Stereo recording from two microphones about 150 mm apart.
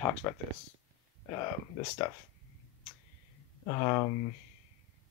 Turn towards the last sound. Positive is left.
turn(degrees=10)  # may be behind; listen again after turning